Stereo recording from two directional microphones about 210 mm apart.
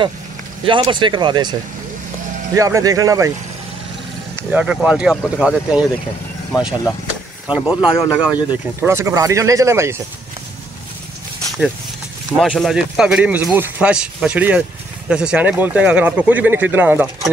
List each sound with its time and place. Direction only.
0.7 s speech: 20° right (ahead or behind)
4.5 s speech: 5° right (ahead or behind)
7.4 s speech: 5° right (ahead or behind)
12.4 s speech: centre (ahead or behind)